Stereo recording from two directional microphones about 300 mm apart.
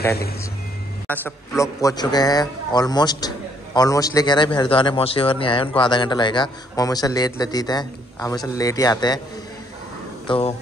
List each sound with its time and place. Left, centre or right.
1.0 s a man's voice: centre
10.2 s speech: centre